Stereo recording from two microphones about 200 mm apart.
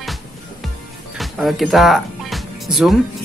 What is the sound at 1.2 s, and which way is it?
Music, centre (ahead or behind).